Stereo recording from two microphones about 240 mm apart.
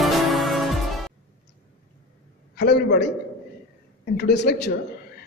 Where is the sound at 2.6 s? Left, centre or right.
Left.